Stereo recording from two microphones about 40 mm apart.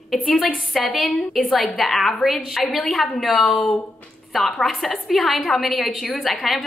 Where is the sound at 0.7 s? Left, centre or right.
Centre.